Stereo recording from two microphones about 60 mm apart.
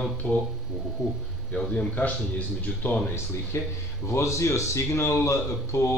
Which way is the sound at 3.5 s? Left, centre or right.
Left.